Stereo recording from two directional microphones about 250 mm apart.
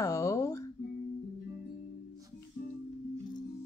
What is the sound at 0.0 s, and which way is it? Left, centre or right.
Music, centre.